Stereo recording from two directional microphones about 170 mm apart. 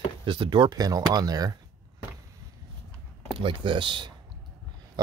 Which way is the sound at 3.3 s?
30° right (ahead or behind).